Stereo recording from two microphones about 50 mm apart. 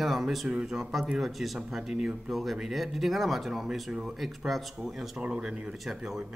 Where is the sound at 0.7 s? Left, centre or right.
Centre.